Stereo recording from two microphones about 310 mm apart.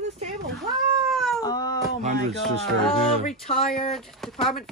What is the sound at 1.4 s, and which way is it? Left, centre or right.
Speech, centre.